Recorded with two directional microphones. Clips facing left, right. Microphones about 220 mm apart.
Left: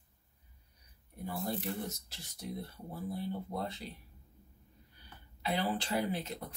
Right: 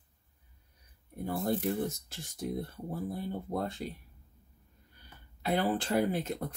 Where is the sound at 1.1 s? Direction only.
50° right (ahead or behind).